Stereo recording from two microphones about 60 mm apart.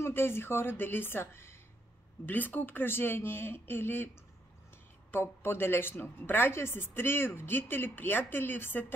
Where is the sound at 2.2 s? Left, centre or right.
Left.